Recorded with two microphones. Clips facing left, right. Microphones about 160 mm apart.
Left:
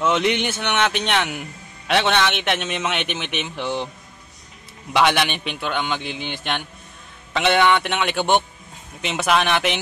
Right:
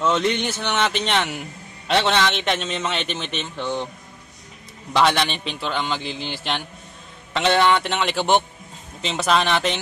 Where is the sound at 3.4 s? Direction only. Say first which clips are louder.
Left 1 dB; 20° left (ahead or behind).